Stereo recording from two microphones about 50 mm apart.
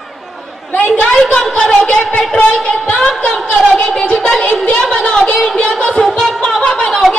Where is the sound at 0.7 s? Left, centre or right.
Left.